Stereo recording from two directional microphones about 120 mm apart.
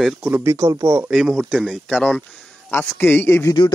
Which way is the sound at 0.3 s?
20° right (ahead or behind).